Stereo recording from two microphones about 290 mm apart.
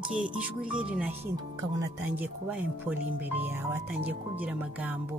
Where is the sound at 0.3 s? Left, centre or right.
Centre.